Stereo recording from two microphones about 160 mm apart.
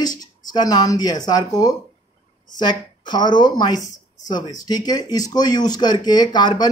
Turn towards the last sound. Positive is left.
turn(degrees=25)  # may be behind; listen again after turning